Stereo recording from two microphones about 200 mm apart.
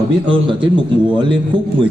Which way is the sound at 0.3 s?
25° right (ahead or behind).